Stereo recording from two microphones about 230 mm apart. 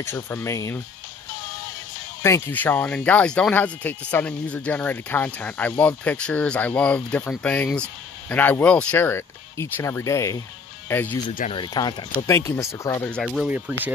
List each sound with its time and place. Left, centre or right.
0.0 s speech: centre
2.2 s speech: centre